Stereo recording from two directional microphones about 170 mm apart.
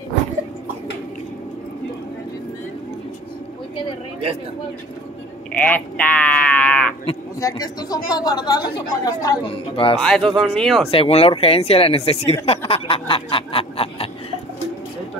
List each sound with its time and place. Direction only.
5.5 s sheep: 10° left (ahead or behind)
7.3 s a woman's voice: 20° left (ahead or behind)
9.9 s speech: centre (ahead or behind)
10.9 s speech: 35° left (ahead or behind)